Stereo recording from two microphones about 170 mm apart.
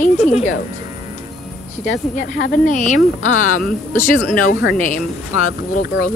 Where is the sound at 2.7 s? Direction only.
45° left (ahead or behind).